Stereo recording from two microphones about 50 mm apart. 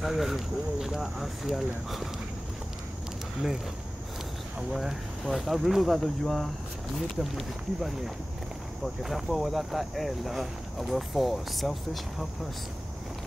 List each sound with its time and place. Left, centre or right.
0.0 s speech: centre
4.6 s speech: centre